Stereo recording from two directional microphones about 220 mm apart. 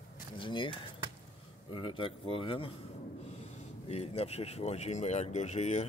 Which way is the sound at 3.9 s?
30° left (ahead or behind).